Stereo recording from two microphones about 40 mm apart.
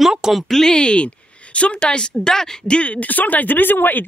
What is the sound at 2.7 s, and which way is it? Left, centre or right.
Speech, left.